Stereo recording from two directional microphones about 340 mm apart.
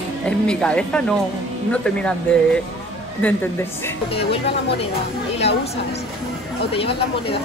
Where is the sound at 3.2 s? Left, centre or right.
Centre.